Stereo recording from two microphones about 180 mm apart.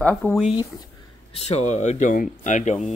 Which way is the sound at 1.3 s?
35° left (ahead or behind).